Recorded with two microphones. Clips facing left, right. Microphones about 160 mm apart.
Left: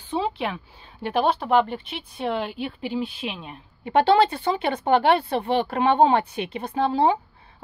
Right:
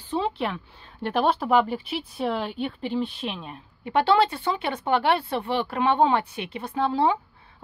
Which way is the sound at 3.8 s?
35° left (ahead or behind).